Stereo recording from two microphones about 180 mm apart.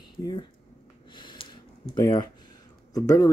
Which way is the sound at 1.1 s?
30° left (ahead or behind).